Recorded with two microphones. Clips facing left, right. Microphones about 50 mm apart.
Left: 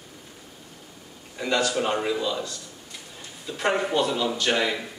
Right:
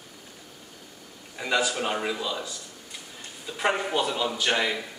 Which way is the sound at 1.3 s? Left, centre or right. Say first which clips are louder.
Left 2 dB; centre.